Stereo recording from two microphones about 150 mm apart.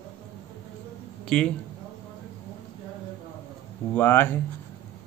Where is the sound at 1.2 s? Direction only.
5° left (ahead or behind).